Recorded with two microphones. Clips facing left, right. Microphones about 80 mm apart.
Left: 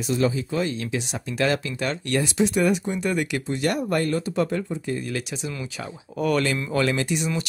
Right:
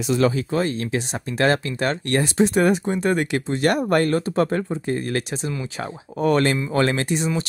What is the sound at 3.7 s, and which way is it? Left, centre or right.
Speech, right.